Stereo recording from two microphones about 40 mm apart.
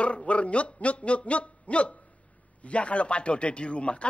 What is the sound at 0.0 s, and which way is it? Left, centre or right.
Speech, left.